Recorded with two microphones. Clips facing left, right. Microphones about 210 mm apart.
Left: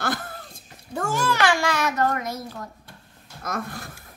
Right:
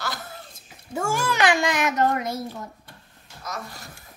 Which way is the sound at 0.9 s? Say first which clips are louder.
Even; 10° right (ahead or behind).